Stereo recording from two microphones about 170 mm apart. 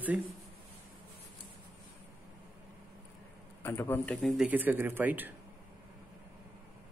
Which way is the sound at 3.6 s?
10° left (ahead or behind).